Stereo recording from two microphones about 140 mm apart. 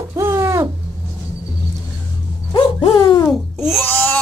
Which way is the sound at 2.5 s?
35° left (ahead or behind).